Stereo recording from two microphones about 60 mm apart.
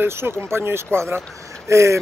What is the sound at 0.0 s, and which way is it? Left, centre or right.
Speech, right.